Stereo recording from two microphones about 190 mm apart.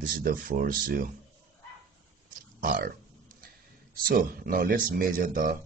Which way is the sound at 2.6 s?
50° right (ahead or behind).